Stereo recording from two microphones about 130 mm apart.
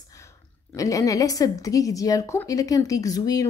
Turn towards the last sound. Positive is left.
turn(degrees=30)  # may be behind; listen again after turning